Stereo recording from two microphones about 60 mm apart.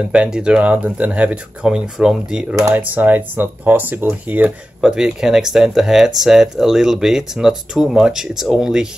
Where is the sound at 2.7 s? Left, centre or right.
Right.